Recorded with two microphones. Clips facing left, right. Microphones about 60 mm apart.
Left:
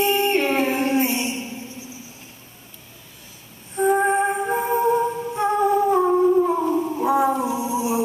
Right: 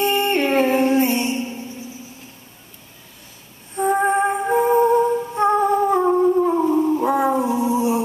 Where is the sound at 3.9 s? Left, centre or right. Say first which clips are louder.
Right 1 dB; centre.